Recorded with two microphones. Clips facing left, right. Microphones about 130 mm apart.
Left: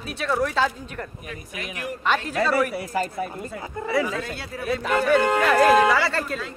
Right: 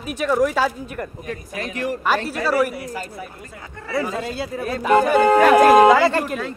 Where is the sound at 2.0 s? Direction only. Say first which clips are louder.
Even; 5° right (ahead or behind).